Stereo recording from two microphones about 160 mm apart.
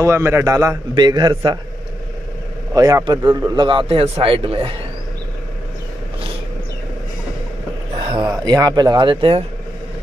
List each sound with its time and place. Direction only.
0.0 s a man's voice: 15° right (ahead or behind)
2.7 s a man's voice: 25° right (ahead or behind)
8.1 s a man's voice: 25° right (ahead or behind)